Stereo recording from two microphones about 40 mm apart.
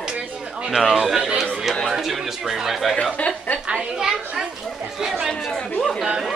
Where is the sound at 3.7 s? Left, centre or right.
Centre.